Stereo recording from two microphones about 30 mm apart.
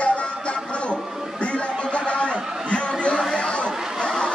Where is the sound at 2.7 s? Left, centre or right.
Left.